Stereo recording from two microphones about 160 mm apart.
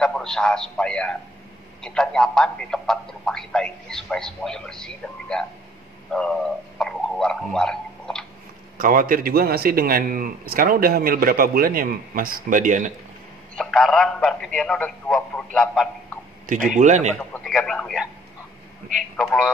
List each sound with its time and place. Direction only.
0.0 s a man's voice: 5° left (ahead or behind)
6.8 s tick-tock: 5° left (ahead or behind)
8.7 s a man's voice: 60° right (ahead or behind)
13.6 s a man's voice: centre (ahead or behind)
16.7 s a man's voice: 50° right (ahead or behind)
17.2 s a man's voice: 5° left (ahead or behind)
19.1 s a man's voice: 5° left (ahead or behind)